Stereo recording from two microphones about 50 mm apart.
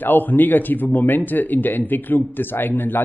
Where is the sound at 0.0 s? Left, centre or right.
Left.